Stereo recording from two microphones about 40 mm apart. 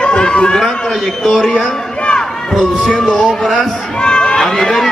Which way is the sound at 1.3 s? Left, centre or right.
Centre.